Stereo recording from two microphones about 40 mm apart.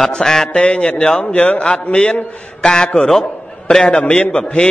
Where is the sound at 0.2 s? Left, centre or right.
Centre.